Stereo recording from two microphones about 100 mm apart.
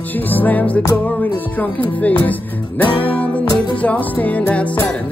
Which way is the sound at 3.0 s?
15° left (ahead or behind).